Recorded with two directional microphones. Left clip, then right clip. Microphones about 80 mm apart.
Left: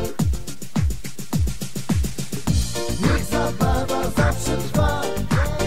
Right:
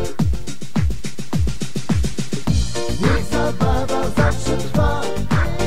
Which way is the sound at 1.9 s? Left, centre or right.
Right.